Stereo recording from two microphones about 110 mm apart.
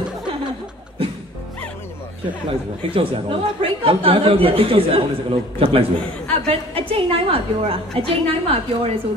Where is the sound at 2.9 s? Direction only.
55° right (ahead or behind).